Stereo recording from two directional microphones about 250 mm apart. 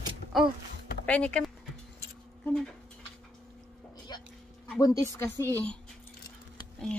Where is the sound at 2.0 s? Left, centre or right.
Centre.